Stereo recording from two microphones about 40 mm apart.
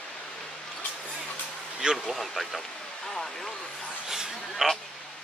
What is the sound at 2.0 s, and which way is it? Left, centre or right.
Speech, centre.